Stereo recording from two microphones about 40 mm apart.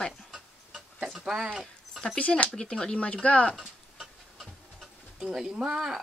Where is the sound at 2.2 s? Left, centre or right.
Left.